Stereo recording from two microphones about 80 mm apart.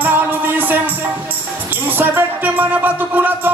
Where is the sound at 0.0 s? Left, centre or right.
Right.